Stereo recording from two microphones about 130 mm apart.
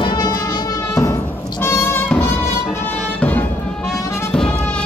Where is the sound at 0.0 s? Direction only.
30° left (ahead or behind).